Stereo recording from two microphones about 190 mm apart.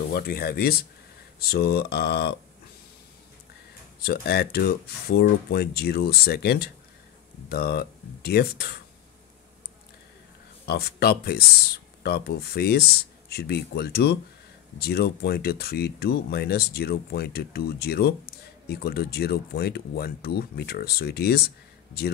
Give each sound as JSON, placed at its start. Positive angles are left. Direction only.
{"t": 0.1, "sound": "speech", "side_deg": 50}
{"t": 4.0, "sound": "speech", "side_deg": 55}
{"t": 10.6, "sound": "speech", "side_deg": 55}